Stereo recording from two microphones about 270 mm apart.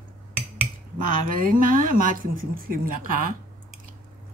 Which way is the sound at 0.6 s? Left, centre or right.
Right.